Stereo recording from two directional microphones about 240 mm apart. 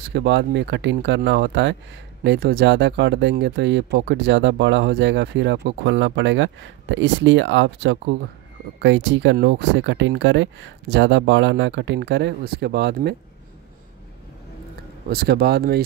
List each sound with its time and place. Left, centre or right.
0.1 s speech: right
15.0 s speech: right